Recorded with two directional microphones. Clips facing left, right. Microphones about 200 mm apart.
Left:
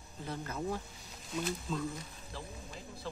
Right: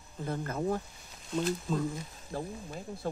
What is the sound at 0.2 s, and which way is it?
Speech, 50° right (ahead or behind).